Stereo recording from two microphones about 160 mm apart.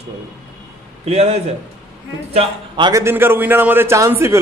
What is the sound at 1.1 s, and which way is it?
Speech, 40° right (ahead or behind).